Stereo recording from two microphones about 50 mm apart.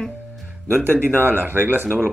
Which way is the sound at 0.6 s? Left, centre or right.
Right.